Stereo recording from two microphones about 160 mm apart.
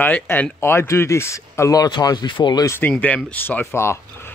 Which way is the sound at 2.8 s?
10° left (ahead or behind).